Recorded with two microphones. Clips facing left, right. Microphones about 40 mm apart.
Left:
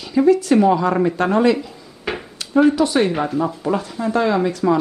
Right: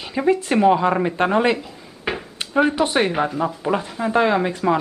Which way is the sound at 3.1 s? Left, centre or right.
Centre.